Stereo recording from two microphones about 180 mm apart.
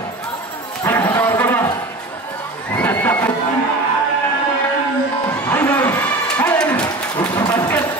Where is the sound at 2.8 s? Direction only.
10° left (ahead or behind).